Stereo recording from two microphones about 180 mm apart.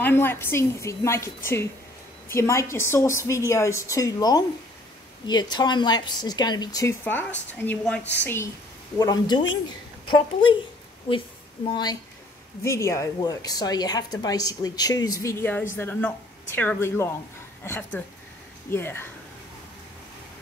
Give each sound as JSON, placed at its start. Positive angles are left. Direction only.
{"t": 0.0, "sound": "a woman's voice", "side_deg": 10}